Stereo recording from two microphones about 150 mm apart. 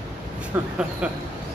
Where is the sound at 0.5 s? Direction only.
15° right (ahead or behind).